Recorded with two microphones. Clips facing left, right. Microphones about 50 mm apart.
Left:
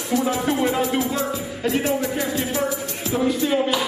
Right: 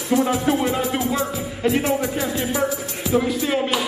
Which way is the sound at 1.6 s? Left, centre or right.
Centre.